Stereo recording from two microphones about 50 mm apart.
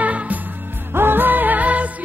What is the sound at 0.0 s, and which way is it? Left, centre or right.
Music, right.